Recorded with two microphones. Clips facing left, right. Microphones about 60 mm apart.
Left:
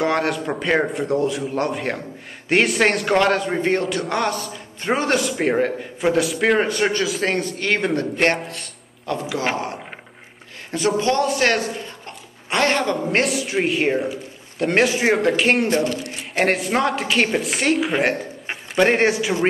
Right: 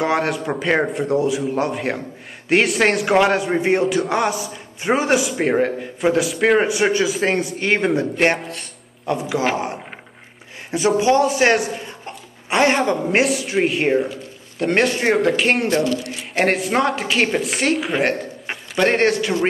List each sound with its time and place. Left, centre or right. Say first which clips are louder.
0.0 s a man's voice: right 1 dB; centre
9.1 s speech: right 3 dB; centre
10.7 s speech: right 4 dB; centre
11.4 s a sound: right 3 dB; centre
13.0 s a man's voice: right 2 dB; centre